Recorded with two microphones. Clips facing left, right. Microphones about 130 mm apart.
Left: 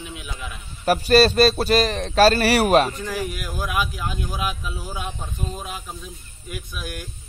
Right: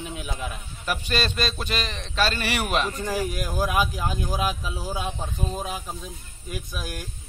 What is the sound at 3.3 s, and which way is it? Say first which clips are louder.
Speech: right 2 dB; 35° right (ahead or behind).